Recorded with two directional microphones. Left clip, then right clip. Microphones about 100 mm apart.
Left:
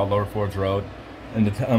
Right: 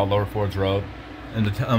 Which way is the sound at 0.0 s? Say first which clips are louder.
Even; 20° left (ahead or behind).